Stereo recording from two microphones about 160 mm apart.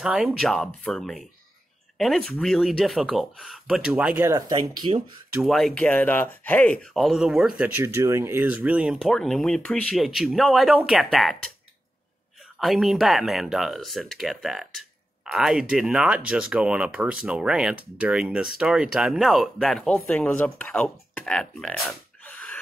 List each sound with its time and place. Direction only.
0.0 s speech: 5° right (ahead or behind)
4.2 s speech: 20° right (ahead or behind)
5.4 s speech: centre (ahead or behind)
12.5 s speech: centre (ahead or behind)
22.2 s a sound: 10° left (ahead or behind)